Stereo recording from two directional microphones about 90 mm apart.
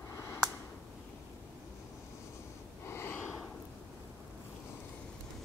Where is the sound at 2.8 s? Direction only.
25° left (ahead or behind).